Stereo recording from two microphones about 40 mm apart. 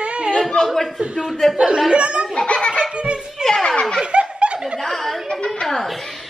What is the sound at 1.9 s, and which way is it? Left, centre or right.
Speech, right.